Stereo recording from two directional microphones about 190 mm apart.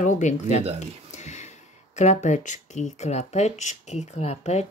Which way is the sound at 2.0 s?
40° left (ahead or behind).